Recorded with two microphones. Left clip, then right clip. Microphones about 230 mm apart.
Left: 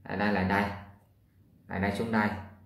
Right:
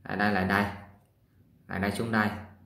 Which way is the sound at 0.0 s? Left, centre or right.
Right.